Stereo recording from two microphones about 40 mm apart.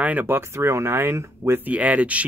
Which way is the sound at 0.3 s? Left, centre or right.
Right.